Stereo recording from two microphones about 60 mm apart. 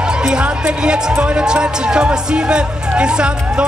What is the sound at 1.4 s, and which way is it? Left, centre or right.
Speech, centre.